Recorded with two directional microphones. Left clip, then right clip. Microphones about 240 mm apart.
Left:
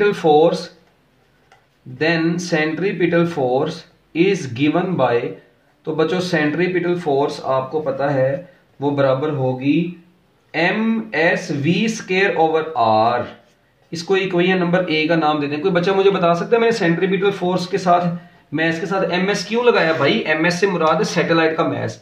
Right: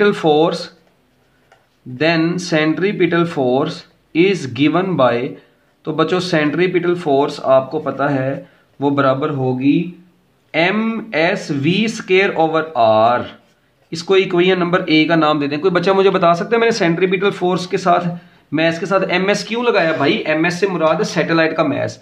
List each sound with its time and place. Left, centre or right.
0.0 s speech: right
2.0 s speech: right
10.6 s speech: right